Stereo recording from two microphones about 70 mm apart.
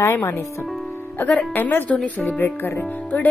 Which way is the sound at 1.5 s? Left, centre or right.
Left.